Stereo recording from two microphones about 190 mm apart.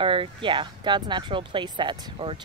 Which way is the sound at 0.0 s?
25° right (ahead or behind).